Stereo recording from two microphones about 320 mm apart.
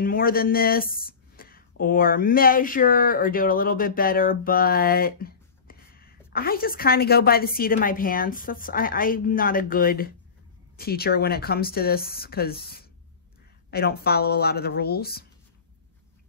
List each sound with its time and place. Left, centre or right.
0.0 s speech: left